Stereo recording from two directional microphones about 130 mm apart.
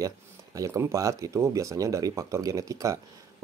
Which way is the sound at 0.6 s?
25° right (ahead or behind).